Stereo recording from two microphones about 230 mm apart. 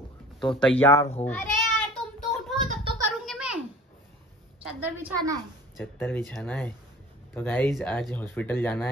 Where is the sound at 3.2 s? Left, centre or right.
Centre.